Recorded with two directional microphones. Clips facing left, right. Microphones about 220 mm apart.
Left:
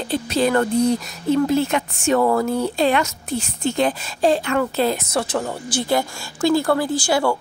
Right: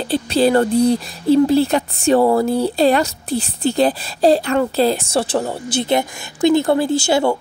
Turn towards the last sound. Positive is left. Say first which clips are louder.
# right 3 dB
turn(degrees=-25)  # may be behind; listen again after turning